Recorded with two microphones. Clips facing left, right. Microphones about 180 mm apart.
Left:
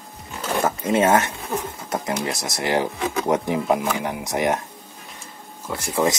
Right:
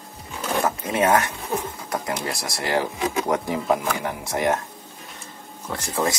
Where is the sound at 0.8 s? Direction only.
25° left (ahead or behind).